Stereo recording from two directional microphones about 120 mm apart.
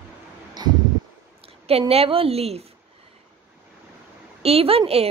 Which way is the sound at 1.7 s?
55° right (ahead or behind).